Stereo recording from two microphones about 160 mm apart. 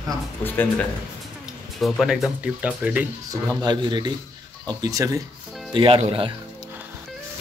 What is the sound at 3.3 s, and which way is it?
Speech, 20° right (ahead or behind).